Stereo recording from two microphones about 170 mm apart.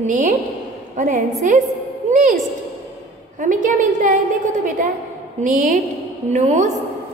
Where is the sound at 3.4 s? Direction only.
50° right (ahead or behind).